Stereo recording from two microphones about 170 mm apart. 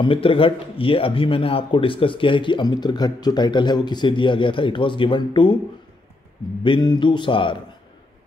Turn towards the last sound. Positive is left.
turn(degrees=30)  # may be behind; listen again after turning